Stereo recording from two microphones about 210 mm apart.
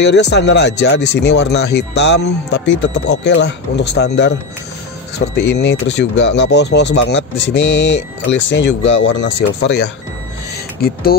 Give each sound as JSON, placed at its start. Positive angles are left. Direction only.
{"t": 0.0, "sound": "speech", "side_deg": 55}
{"t": 5.3, "sound": "speech", "side_deg": 55}
{"t": 10.8, "sound": "speech", "side_deg": 45}